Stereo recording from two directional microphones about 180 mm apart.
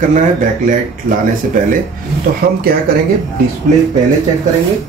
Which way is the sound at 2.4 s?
55° right (ahead or behind).